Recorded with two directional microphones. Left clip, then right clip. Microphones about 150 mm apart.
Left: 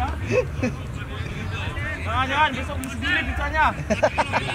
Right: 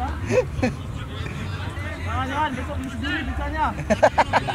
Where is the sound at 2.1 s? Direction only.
15° left (ahead or behind).